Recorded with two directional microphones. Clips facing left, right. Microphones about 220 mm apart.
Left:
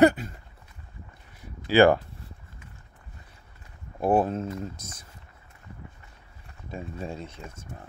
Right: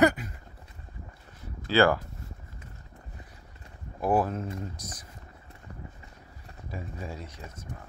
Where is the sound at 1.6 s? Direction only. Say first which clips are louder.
Left 4 dB; 20° left (ahead or behind).